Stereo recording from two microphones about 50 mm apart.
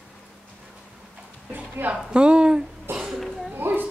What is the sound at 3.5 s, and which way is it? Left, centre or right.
Children playing, right.